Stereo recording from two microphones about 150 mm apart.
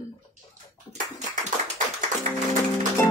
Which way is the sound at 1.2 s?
50° right (ahead or behind).